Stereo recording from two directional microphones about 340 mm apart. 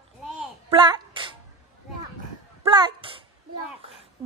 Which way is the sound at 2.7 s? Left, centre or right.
Centre.